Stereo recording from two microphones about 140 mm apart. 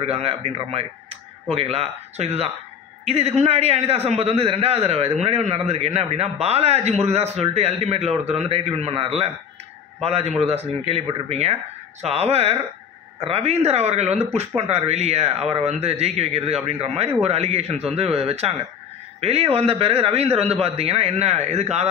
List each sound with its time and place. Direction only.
0.0 s a man's voice: 45° right (ahead or behind)